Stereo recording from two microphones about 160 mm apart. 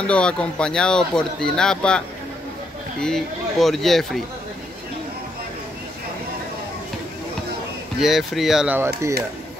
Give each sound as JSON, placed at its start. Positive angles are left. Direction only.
{"t": 0.0, "sound": "speech", "side_deg": 5}
{"t": 8.0, "sound": "speech", "side_deg": 0}
{"t": 8.7, "sound": "speech", "side_deg": -15}